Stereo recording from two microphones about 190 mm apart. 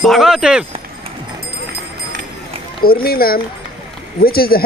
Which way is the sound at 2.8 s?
50° left (ahead or behind).